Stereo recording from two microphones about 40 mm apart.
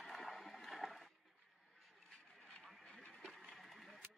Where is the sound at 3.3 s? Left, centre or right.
Centre.